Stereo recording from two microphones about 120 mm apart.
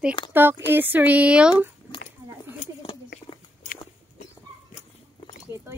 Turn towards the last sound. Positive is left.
turn(degrees=45)  # may be behind; listen again after turning